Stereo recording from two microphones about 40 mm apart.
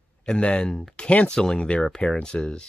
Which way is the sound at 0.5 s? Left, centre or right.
Centre.